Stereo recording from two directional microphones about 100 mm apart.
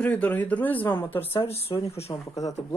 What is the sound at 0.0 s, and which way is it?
Speech, 15° left (ahead or behind).